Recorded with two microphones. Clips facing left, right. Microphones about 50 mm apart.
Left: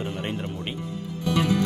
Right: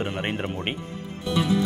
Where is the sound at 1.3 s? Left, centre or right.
Left.